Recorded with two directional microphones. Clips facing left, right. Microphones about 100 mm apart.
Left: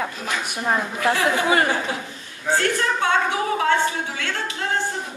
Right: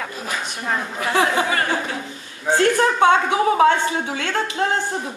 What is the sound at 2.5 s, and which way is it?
Speech, 20° right (ahead or behind).